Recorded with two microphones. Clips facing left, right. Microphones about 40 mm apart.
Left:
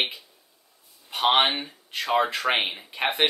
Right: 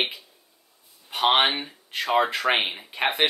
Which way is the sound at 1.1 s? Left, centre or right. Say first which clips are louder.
Right 1 dB; centre.